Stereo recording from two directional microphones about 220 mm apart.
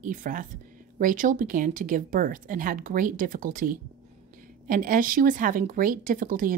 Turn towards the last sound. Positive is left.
turn(degrees=-40)  # may be behind; listen again after turning